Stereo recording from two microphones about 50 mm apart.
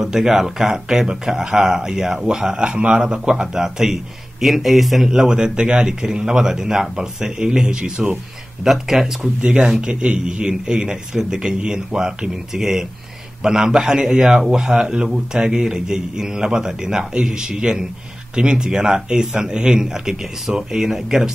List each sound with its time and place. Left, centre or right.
0.0 s speech: centre
9.4 s speech: centre